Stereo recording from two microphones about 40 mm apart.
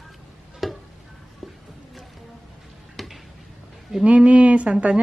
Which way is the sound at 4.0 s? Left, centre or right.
Right.